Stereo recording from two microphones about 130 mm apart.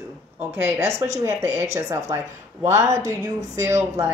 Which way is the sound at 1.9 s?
25° right (ahead or behind).